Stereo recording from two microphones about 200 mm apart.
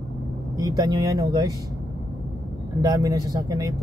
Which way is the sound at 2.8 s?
15° right (ahead or behind).